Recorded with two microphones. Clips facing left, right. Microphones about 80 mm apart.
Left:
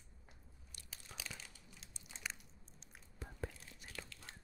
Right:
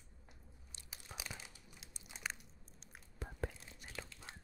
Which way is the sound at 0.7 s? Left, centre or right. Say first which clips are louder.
Right 2 dB; centre.